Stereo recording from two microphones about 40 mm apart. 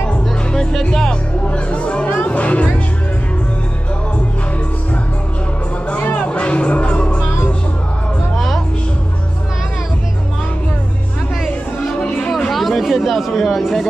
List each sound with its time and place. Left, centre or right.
1.5 s music: left
5.9 s music: left
12.4 s chatter: centre